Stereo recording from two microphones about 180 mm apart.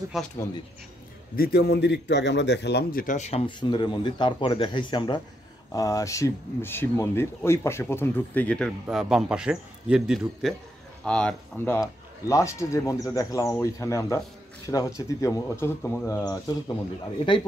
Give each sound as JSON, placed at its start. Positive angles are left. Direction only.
{"t": 0.1, "sound": "speech", "side_deg": 0}
{"t": 1.3, "sound": "a man's voice", "side_deg": 60}